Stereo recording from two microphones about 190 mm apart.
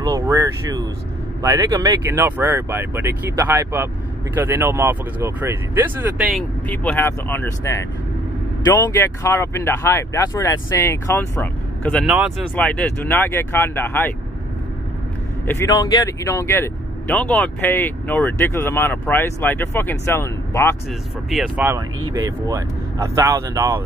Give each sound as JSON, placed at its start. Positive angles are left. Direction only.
{"t": 0.0, "sound": "vehicle", "side_deg": -15}
{"t": 1.4, "sound": "speech", "side_deg": -15}
{"t": 15.4, "sound": "speech", "side_deg": 15}
{"t": 21.3, "sound": "speech", "side_deg": 0}
{"t": 22.0, "sound": "speech", "side_deg": -15}